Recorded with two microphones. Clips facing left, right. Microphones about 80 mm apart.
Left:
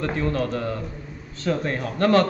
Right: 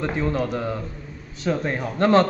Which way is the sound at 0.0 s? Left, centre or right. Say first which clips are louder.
Right 1 dB; centre.